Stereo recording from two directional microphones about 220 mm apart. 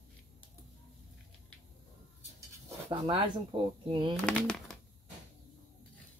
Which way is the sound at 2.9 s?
20° right (ahead or behind).